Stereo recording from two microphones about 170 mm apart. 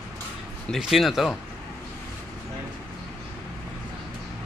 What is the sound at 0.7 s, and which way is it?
Speech, centre (ahead or behind).